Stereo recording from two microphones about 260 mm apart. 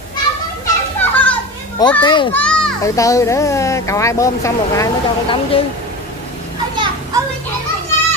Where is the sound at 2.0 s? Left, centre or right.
Centre.